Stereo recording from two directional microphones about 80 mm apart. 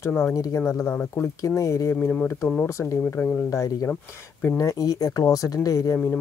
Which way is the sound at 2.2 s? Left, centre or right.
Left.